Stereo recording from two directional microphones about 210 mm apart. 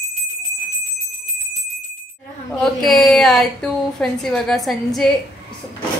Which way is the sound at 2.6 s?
5° left (ahead or behind).